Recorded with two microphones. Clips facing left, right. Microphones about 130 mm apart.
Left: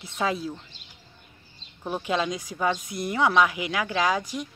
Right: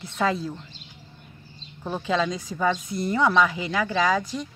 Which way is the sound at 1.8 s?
15° left (ahead or behind).